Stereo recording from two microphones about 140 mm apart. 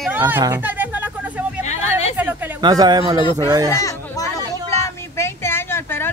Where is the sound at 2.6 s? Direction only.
30° right (ahead or behind).